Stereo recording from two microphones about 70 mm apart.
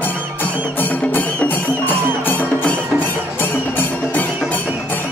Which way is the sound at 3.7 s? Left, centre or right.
Left.